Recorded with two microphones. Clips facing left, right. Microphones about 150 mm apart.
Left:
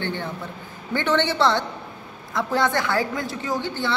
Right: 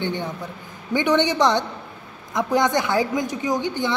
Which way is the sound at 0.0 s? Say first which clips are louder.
Right 2 dB; 15° right (ahead or behind).